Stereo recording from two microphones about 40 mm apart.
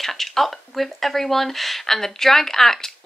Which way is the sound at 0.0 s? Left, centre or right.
Centre.